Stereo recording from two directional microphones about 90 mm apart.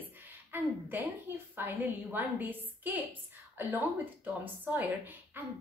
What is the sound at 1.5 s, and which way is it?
A woman's voice, 20° right (ahead or behind).